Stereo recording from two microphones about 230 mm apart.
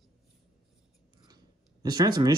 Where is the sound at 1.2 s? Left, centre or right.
Centre.